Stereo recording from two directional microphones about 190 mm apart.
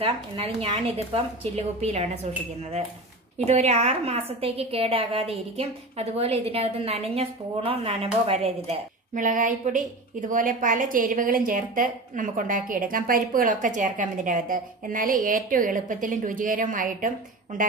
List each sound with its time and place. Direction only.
0.0 s a woman's voice: 30° right (ahead or behind)
3.4 s a woman's voice: 35° right (ahead or behind)
8.6 s a woman's voice: 45° right (ahead or behind)